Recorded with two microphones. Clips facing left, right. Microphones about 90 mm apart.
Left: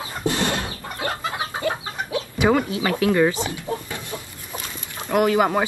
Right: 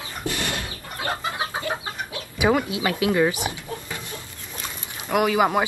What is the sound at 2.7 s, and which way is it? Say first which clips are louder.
Speech: left 2 dB; 10° right (ahead or behind).